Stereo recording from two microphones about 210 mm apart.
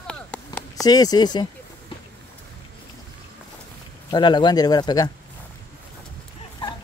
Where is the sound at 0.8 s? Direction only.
20° left (ahead or behind).